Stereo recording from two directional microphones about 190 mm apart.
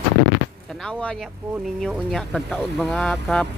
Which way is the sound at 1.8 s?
Centre (ahead or behind).